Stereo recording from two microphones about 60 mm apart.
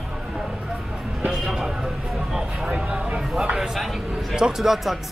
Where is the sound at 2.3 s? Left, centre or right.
Centre.